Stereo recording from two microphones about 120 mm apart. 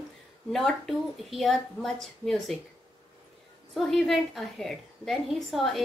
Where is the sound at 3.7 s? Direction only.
Centre (ahead or behind).